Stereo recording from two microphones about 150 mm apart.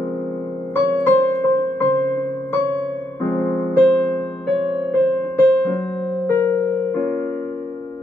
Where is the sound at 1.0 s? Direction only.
15° left (ahead or behind).